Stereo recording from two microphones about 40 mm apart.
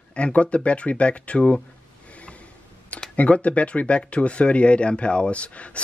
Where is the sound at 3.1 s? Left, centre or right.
Left.